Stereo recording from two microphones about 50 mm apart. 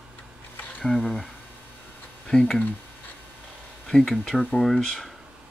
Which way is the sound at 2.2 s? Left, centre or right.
Centre.